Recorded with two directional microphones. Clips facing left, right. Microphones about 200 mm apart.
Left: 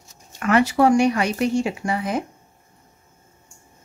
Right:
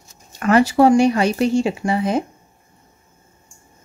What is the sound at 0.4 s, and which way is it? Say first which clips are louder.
Speech: right 4 dB; 35° right (ahead or behind).